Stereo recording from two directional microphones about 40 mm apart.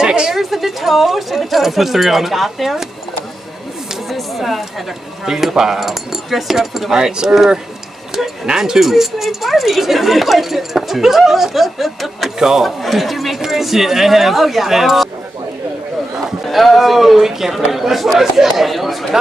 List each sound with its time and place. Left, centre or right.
0.0 s a sound: centre
0.3 s speech: centre
4.1 s a sound: centre
5.2 s speech: centre
7.0 s speech: centre
12.4 s speech: centre
12.6 s speech: centre
16.4 s speech: centre